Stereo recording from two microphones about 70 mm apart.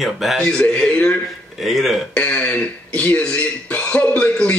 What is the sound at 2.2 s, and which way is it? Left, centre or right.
A man's voice, left.